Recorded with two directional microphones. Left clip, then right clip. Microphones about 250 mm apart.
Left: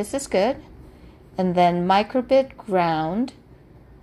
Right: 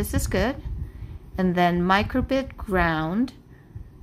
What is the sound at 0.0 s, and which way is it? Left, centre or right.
A woman's voice, right.